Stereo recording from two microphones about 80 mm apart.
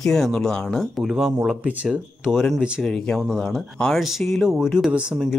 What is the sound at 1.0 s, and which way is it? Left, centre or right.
Speech, centre.